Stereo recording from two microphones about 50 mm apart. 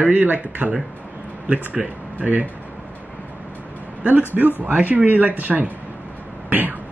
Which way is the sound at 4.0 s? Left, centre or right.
Right.